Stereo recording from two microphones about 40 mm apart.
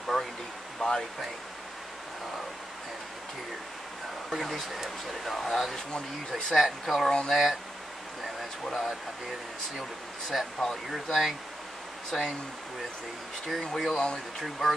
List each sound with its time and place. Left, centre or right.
0.0 s a sound: centre
0.7 s speech: centre
4.3 s speech: centre
7.1 s speech: centre
8.4 s speech: centre
10.3 s speech: centre
13.5 s speech: centre